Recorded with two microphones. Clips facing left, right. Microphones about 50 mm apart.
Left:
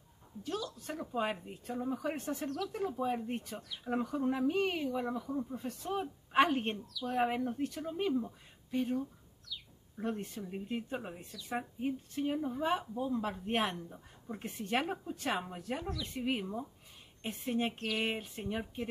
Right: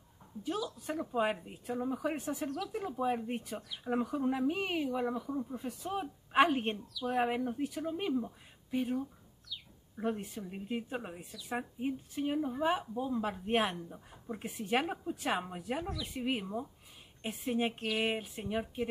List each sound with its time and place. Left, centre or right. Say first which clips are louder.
0.4 s speech: right 2 dB; centre